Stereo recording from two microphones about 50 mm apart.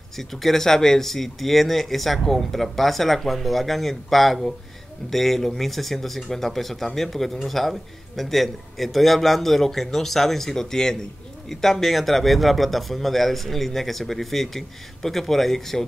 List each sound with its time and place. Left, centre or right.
0.2 s speech: centre